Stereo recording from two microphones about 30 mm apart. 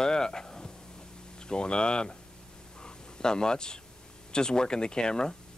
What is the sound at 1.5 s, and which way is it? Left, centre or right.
Speech, left.